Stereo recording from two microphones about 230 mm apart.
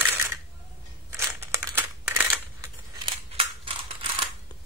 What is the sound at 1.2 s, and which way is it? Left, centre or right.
Crumpling, centre.